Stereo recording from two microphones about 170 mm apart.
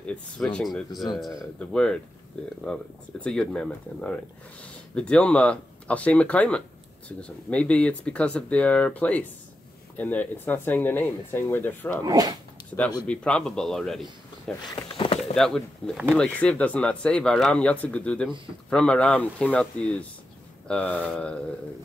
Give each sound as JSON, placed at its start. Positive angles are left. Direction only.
{"t": 0.0, "sound": "a man's voice", "side_deg": 5}
{"t": 12.0, "sound": "speech", "side_deg": -20}
{"t": 13.0, "sound": "a man's voice", "side_deg": 5}
{"t": 14.9, "sound": "a sound", "side_deg": 35}
{"t": 15.3, "sound": "a man's voice", "side_deg": 5}